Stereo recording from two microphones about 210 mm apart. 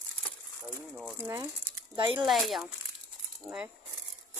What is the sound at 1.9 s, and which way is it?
Speech, 25° right (ahead or behind).